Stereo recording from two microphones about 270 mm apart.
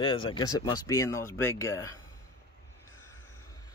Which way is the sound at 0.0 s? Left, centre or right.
Centre.